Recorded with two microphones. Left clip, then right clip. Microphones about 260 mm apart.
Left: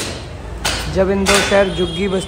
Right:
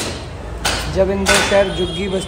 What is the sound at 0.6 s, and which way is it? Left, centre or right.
Speech, centre.